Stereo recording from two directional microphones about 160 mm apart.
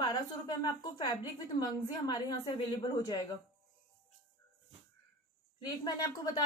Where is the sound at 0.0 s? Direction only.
25° left (ahead or behind).